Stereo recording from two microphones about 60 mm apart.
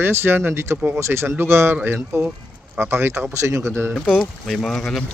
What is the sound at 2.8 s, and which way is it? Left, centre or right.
Speech, right.